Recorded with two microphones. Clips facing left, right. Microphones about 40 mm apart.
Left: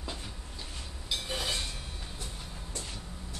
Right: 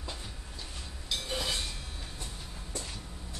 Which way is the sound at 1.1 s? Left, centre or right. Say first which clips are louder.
Even; centre.